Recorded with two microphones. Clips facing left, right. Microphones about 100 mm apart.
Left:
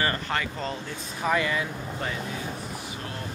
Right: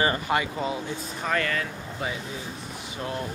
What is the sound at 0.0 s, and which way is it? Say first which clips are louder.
Speech: right 3 dB; 15° right (ahead or behind).